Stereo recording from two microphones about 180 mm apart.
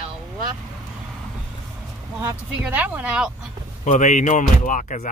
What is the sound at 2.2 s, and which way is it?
Speech, 10° right (ahead or behind).